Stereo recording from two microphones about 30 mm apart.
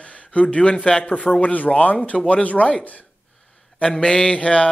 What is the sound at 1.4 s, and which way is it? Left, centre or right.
Speech, left.